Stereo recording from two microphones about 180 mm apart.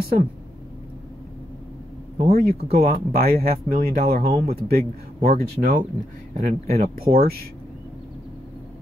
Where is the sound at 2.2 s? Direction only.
55° right (ahead or behind).